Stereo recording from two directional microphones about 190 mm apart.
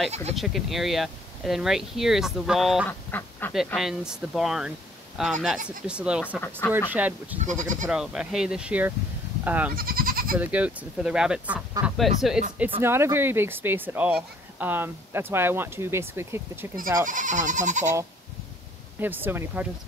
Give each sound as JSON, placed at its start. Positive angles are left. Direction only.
{"t": 0.1, "sound": "speech", "side_deg": -35}
{"t": 0.4, "sound": "speech", "side_deg": 0}
{"t": 2.9, "sound": "duck", "side_deg": 10}
{"t": 3.5, "sound": "speech", "side_deg": 0}
{"t": 7.4, "sound": "speech", "side_deg": -40}
{"t": 7.9, "sound": "speech", "side_deg": -5}
{"t": 9.4, "sound": "goat", "side_deg": -10}
{"t": 9.8, "sound": "goat", "side_deg": -50}
{"t": 10.3, "sound": "speech", "side_deg": -5}
{"t": 12.8, "sound": "speech", "side_deg": -10}
{"t": 16.7, "sound": "speech", "side_deg": -45}
{"t": 18.9, "sound": "speech", "side_deg": -10}